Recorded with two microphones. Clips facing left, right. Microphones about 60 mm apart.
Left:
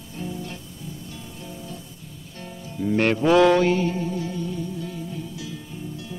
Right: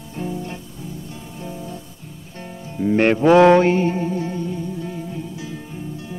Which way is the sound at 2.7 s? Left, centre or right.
Right.